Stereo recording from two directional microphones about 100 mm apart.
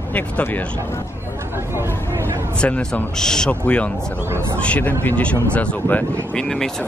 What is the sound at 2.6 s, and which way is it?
Speech, 15° left (ahead or behind).